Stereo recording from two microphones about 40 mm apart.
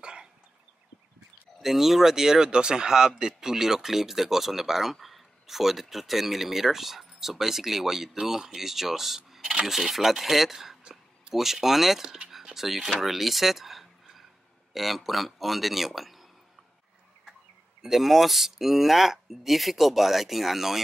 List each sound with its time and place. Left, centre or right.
0.0 s a sound: centre
1.6 s speech: centre
9.4 s coin: centre
9.7 s speech: centre
10.8 s a sound: right
11.3 s speech: centre
17.8 s speech: centre